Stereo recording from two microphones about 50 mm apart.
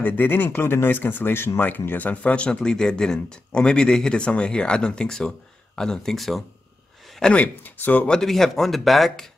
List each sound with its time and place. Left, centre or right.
0.0 s speech: left
1.6 s speech: left
2.3 s speech: left; by 6.4 s centre
7.2 s speech: centre
7.6 s speech: left
8.1 s speech: centre